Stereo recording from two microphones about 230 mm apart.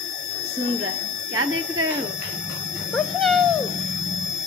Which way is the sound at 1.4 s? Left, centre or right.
Right.